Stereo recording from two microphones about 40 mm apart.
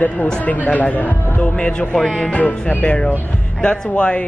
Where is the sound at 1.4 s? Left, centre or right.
Left.